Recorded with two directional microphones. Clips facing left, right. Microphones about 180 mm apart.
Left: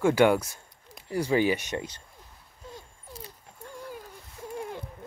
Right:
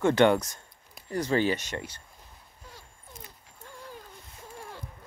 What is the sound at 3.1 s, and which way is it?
Dog, 35° left (ahead or behind).